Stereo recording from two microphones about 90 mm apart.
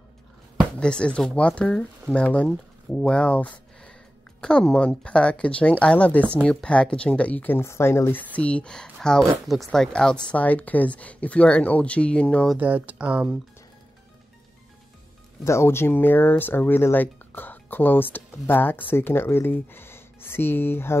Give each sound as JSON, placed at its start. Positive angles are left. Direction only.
{"t": 0.7, "sound": "speech", "side_deg": 10}
{"t": 12.5, "sound": "speech", "side_deg": -20}
{"t": 15.4, "sound": "speech", "side_deg": 30}